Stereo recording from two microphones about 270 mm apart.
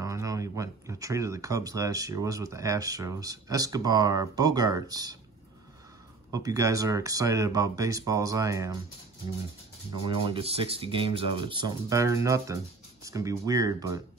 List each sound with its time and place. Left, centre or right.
0.0 s speech: centre
6.3 s speech: centre
10.0 s speech: centre